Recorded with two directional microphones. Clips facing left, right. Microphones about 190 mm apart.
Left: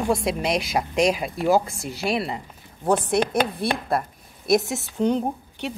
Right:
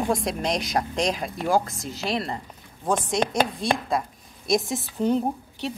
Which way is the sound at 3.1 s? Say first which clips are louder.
Left 2 dB; 60° left (ahead or behind).